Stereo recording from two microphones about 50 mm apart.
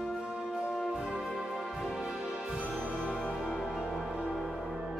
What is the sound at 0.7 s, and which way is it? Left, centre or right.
Music, centre.